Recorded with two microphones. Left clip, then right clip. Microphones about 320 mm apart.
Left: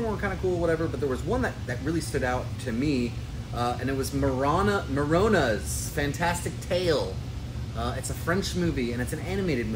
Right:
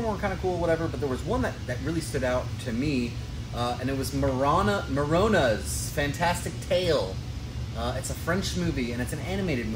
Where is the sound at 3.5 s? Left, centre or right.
Centre.